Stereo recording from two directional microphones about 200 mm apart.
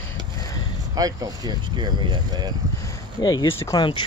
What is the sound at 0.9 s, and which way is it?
Speech, 20° right (ahead or behind).